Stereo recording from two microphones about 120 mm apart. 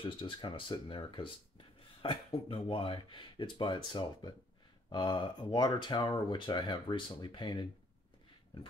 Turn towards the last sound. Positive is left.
turn(degrees=40)  # may be behind; listen again after turning